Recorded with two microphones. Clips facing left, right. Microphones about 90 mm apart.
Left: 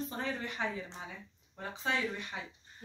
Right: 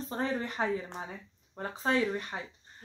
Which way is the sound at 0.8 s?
50° right (ahead or behind).